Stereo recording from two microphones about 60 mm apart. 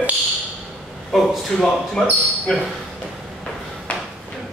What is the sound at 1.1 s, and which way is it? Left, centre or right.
Speech, centre.